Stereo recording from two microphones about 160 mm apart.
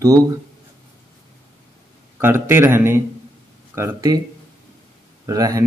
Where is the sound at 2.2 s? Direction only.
15° right (ahead or behind).